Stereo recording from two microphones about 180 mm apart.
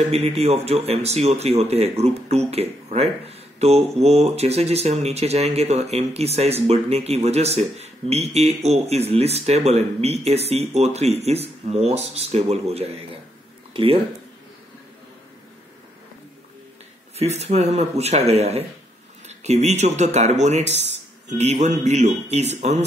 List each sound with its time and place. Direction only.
0.0 s speech: 35° right (ahead or behind)
17.2 s speech: 35° right (ahead or behind)